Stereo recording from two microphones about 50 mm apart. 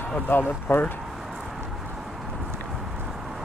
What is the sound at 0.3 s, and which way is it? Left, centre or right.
Speech, left.